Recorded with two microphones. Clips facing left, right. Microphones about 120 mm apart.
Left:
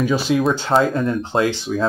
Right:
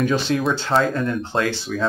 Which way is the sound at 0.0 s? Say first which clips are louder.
Left 2 dB; 10° left (ahead or behind).